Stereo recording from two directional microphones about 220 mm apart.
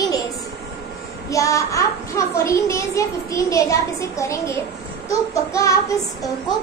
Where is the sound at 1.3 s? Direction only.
15° left (ahead or behind).